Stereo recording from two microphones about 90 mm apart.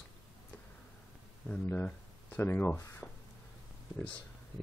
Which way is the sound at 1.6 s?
20° left (ahead or behind).